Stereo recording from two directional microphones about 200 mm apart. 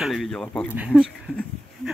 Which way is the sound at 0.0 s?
Centre (ahead or behind).